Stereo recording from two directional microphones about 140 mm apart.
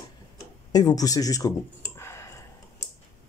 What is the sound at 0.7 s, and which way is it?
Speech, 25° left (ahead or behind).